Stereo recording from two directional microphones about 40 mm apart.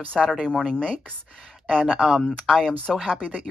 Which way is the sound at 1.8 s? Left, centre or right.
Centre.